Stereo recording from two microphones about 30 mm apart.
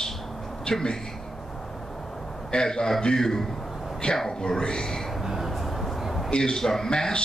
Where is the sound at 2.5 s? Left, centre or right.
Left.